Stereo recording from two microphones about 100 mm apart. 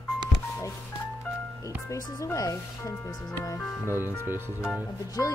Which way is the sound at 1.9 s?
35° left (ahead or behind).